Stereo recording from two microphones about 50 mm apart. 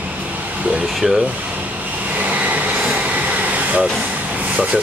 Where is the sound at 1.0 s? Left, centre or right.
Centre.